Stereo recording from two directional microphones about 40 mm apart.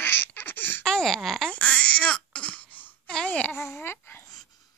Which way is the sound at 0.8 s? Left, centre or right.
Centre.